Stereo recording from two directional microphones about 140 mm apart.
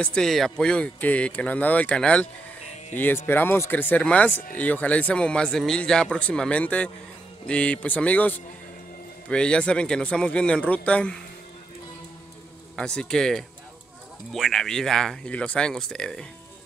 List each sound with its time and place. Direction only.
0.0 s speech: 5° left (ahead or behind)
12.7 s speech: 5° left (ahead or behind)